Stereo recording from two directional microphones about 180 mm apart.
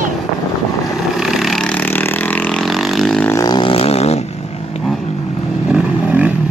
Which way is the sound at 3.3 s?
20° left (ahead or behind).